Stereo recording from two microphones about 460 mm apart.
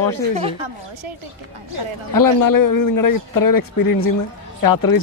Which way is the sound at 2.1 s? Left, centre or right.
Left.